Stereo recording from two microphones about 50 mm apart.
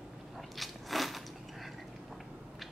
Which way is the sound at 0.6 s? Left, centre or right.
Centre.